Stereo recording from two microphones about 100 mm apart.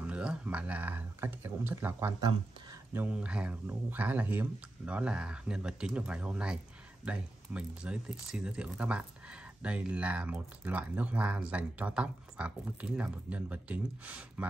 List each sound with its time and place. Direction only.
0.0 s speech: 10° right (ahead or behind)
3.1 s speech: 10° right (ahead or behind)